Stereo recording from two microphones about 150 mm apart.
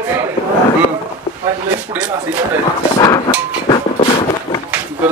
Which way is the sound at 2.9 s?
25° left (ahead or behind).